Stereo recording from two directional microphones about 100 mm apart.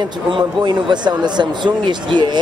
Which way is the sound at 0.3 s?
50° right (ahead or behind).